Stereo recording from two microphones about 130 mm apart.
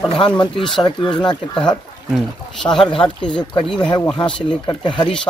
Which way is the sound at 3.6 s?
35° left (ahead or behind).